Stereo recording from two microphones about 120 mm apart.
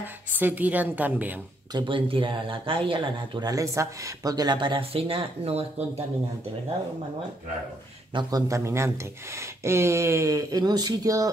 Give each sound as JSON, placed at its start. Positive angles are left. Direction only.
{"t": 0.0, "sound": "a woman's voice", "side_deg": -15}
{"t": 1.7, "sound": "speech", "side_deg": -40}
{"t": 8.1, "sound": "speech", "side_deg": -35}